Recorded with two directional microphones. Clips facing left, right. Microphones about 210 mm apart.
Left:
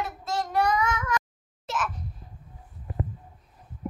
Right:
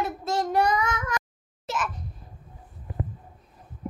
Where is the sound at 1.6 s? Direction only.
5° left (ahead or behind).